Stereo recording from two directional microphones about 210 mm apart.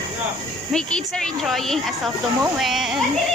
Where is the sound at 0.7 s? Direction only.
5° left (ahead or behind).